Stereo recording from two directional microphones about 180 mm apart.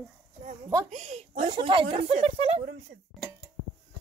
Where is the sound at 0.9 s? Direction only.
40° right (ahead or behind).